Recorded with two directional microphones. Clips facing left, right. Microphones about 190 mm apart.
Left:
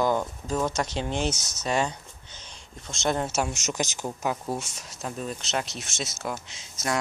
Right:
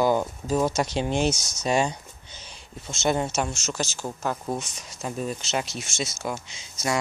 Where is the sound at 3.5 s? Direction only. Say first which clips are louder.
Even; 15° left (ahead or behind).